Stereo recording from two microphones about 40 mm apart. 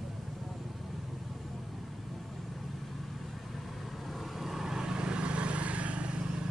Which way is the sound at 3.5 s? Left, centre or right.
Centre.